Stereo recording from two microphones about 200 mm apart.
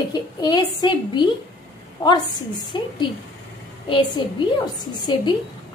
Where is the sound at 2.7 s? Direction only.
25° left (ahead or behind).